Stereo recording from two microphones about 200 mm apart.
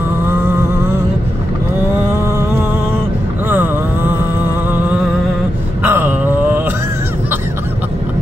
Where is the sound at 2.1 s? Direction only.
15° right (ahead or behind).